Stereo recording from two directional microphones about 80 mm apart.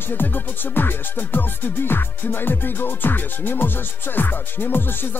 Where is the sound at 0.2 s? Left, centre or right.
Left.